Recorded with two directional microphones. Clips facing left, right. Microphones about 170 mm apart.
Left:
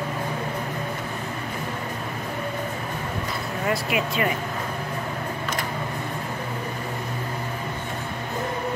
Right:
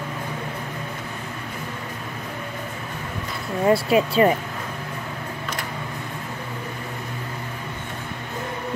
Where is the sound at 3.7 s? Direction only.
30° right (ahead or behind).